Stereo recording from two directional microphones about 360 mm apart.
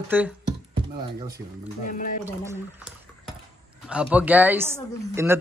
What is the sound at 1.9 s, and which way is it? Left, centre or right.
Speech, left.